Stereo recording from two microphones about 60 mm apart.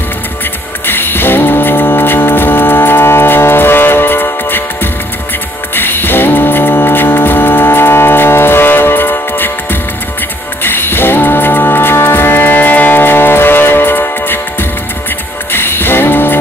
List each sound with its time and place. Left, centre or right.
0.8 s music: left
5.8 s a capella: left
15.5 s music: left